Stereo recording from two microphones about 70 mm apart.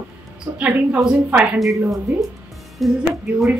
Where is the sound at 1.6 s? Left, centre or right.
Centre.